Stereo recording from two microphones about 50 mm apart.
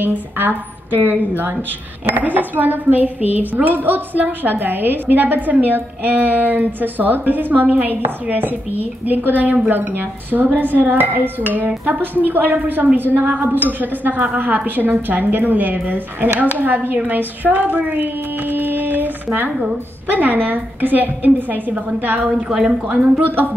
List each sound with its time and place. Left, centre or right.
0.0 s a woman's voice: right
22.2 s a woman's voice: centre
22.7 s a woman's voice: right